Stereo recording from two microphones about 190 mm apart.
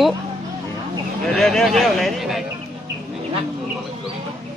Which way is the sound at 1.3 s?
Centre (ahead or behind).